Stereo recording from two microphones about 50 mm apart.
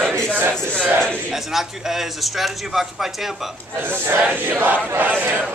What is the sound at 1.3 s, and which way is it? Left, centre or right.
Speech, centre.